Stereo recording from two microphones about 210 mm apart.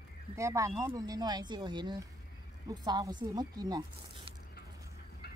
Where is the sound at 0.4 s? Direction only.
15° right (ahead or behind).